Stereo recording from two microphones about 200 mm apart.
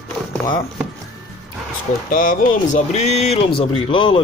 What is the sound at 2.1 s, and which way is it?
Speech, 40° left (ahead or behind).